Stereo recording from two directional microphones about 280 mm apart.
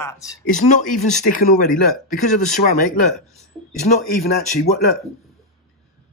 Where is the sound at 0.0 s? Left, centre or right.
Centre.